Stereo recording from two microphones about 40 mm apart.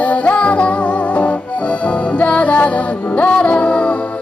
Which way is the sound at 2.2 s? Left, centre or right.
Left.